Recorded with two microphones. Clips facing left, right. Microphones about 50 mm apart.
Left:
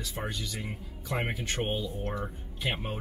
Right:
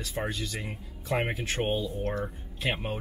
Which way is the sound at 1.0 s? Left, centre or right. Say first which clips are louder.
Right 3 dB; centre.